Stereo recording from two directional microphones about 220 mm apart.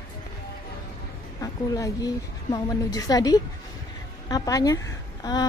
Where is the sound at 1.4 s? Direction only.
15° left (ahead or behind).